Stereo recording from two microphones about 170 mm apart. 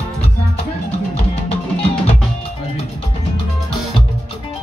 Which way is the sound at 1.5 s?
35° left (ahead or behind).